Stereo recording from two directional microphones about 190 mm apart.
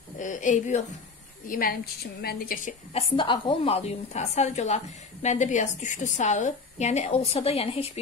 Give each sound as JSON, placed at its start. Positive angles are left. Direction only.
{"t": 0.2, "sound": "a woman's voice", "side_deg": 40}
{"t": 1.5, "sound": "a woman's voice", "side_deg": 50}
{"t": 2.9, "sound": "a woman's voice", "side_deg": 30}